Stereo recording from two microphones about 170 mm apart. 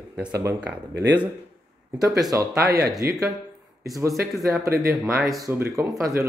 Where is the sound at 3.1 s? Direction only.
Centre (ahead or behind).